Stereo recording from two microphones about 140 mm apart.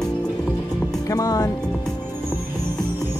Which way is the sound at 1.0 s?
25° left (ahead or behind).